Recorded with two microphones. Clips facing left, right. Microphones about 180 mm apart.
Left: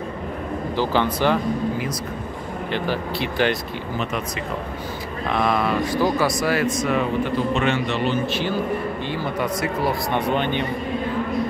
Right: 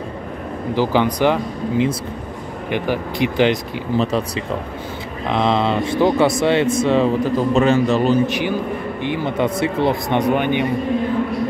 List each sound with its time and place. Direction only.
0.7 s speech: 15° right (ahead or behind)
5.3 s speech: 25° right (ahead or behind)
7.3 s a man's voice: 40° right (ahead or behind)
8.3 s speech: 15° right (ahead or behind)